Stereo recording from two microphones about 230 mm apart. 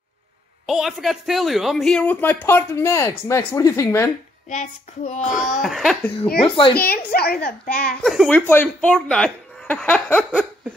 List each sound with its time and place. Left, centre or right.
0.7 s speech: centre
4.5 s child singing: left
5.6 s speech: centre
6.4 s child singing: left
6.7 s a child's voice: left
8.0 s speech: centre